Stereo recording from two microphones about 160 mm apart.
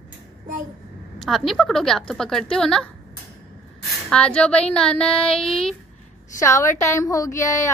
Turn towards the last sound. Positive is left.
turn(degrees=20)  # may be behind; listen again after turning